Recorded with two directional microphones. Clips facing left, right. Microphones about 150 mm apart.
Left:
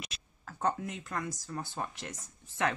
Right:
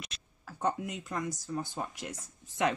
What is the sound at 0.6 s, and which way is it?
Speech, 15° right (ahead or behind).